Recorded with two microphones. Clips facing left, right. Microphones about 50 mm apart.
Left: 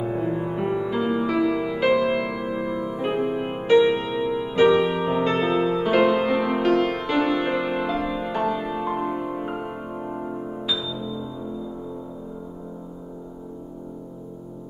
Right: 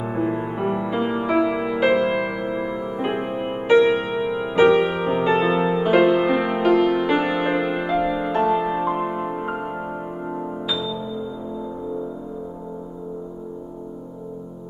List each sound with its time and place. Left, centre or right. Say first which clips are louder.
0.0 s music: right 1 dB; centre
1.8 s music: right 2 dB; centre
4.6 s music: right 1 dB; centre